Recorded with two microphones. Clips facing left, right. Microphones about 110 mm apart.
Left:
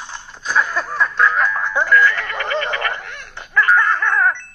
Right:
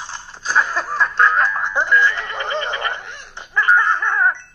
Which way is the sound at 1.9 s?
25° right (ahead or behind).